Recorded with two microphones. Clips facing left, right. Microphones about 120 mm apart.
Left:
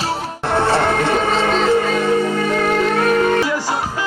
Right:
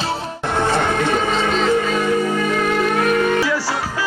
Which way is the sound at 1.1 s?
40° left (ahead or behind).